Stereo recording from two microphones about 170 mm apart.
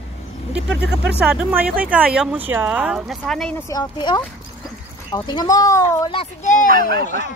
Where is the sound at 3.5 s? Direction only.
20° left (ahead or behind).